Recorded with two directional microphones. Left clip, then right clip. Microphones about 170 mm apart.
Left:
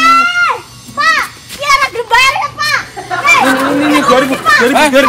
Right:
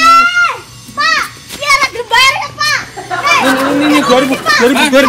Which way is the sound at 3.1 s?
Centre (ahead or behind).